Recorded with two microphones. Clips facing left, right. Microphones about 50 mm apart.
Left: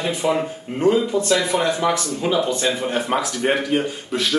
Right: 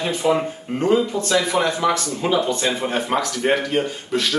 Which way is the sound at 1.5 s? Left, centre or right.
Centre.